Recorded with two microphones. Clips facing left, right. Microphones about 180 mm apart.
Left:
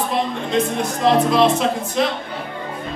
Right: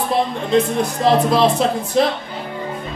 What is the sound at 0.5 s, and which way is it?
Speech, 35° right (ahead or behind).